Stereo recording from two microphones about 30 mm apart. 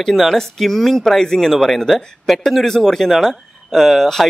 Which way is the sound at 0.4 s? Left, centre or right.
Centre.